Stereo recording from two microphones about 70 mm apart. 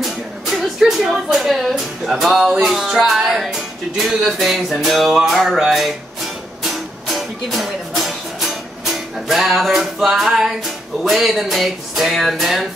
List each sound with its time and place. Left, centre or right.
0.0 s speech: centre
2.6 s music: centre